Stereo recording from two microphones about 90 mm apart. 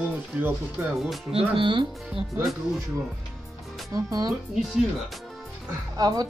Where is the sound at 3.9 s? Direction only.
40° right (ahead or behind).